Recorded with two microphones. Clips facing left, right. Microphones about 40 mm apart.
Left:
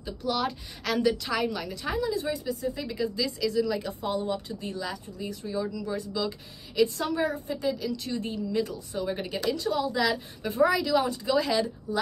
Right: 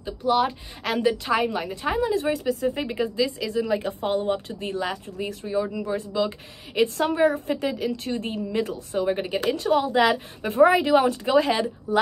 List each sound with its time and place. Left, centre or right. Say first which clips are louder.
0.0 s speech: right 7 dB; right
3.2 s speech: right 1 dB; right
9.1 s speech: right 5 dB; right